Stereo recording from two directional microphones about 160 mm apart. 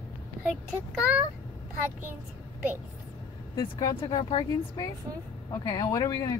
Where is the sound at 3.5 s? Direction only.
25° left (ahead or behind).